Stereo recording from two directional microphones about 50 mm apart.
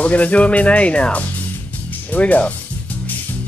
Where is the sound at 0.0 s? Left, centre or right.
Left.